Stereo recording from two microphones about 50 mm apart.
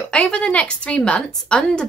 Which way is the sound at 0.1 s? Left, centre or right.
Centre.